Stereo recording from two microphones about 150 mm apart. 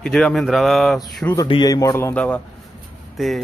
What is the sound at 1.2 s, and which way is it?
Speech, 20° left (ahead or behind).